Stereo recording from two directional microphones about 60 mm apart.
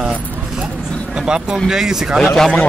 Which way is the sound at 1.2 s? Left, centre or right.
Centre.